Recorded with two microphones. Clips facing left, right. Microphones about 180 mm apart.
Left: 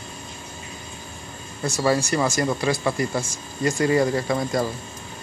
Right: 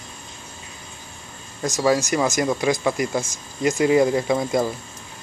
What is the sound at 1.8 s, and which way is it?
Speech, 15° right (ahead or behind).